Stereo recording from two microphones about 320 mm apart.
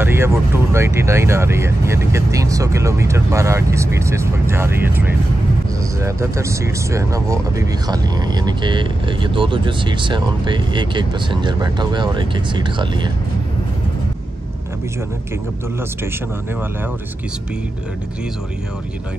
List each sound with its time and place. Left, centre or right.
0.0 s vehicle: centre
0.7 s speech: centre